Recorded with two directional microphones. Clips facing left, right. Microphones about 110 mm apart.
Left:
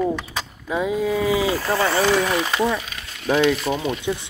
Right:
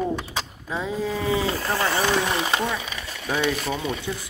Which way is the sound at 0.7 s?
15° left (ahead or behind).